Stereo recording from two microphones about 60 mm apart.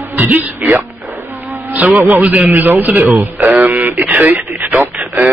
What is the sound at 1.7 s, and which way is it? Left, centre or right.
Speech, right.